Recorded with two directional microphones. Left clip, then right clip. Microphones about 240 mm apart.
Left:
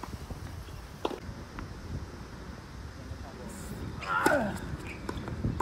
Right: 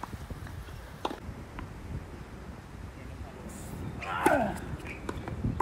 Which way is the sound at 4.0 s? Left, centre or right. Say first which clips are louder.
Even; centre.